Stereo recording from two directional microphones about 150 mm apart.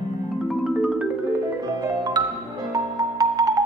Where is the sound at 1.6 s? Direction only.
25° right (ahead or behind).